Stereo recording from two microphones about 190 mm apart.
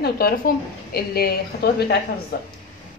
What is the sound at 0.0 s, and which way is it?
A woman's voice, 55° left (ahead or behind).